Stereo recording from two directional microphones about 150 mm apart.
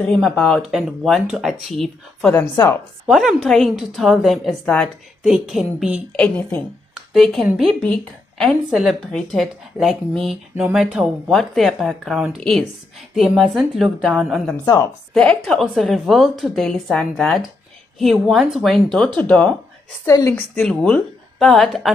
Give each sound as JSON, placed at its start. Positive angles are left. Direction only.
{"t": 0.0, "sound": "speech", "side_deg": 5}
{"t": 2.5, "sound": "a woman's voice", "side_deg": 20}
{"t": 3.1, "sound": "speech", "side_deg": 0}
{"t": 6.1, "sound": "a woman's voice", "side_deg": 10}
{"t": 6.9, "sound": "a sound", "side_deg": 0}
{"t": 7.9, "sound": "speech", "side_deg": 5}
{"t": 20.1, "sound": "a woman's voice", "side_deg": 20}
{"t": 20.5, "sound": "speech", "side_deg": 5}